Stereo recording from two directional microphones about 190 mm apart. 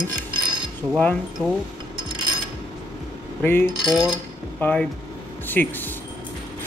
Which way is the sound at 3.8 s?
5° right (ahead or behind).